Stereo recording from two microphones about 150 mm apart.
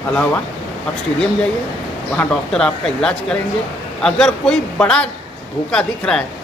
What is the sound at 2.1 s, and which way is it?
A woman's voice, 5° left (ahead or behind).